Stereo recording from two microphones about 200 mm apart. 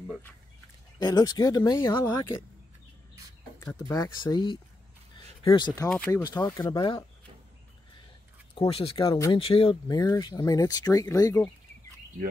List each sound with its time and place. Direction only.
0.9 s speech: 20° left (ahead or behind)
3.7 s speech: 20° left (ahead or behind)
5.1 s a sound: 25° left (ahead or behind)
5.9 s speech: 10° left (ahead or behind)
8.5 s speech: 30° left (ahead or behind)